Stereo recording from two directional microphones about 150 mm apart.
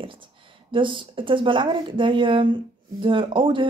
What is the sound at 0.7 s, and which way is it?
Speech, 35° right (ahead or behind).